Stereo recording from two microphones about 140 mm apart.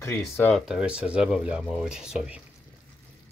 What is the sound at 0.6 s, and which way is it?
Speech, 5° right (ahead or behind).